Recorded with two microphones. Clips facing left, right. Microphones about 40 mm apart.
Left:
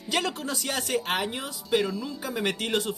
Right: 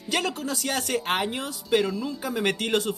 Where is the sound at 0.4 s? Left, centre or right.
Centre.